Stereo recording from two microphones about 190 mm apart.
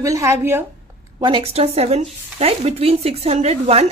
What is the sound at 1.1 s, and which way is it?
A woman's voice, 25° right (ahead or behind).